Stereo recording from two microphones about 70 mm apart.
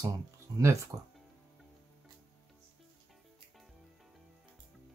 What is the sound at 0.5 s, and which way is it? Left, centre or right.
Speech, right.